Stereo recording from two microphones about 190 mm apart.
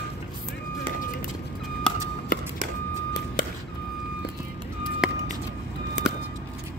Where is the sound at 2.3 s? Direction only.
45° left (ahead or behind).